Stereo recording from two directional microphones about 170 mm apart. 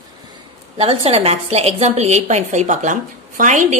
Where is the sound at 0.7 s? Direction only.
35° right (ahead or behind).